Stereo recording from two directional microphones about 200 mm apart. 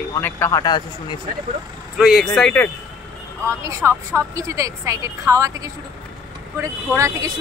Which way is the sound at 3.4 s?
15° right (ahead or behind).